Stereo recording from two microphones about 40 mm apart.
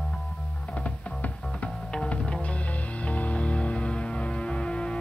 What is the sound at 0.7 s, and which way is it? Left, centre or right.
Music, left.